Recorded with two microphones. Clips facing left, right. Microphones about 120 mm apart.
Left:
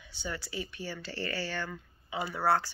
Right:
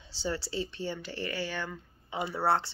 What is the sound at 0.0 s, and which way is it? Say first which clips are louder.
Speech: right 5 dB; 30° right (ahead or behind).